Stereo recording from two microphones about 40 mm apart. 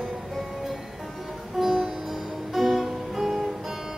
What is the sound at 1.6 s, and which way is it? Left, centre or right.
Music, centre.